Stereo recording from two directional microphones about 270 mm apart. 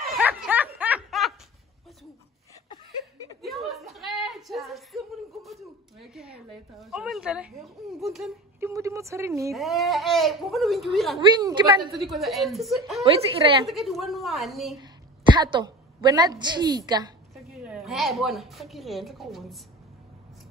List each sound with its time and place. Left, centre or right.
0.1 s snicker: centre
3.4 s a sound: centre
9.5 s speech: centre
11.1 s a woman's voice: centre
11.9 s speech: centre
15.3 s a woman's voice: centre
17.3 s a woman's voice: centre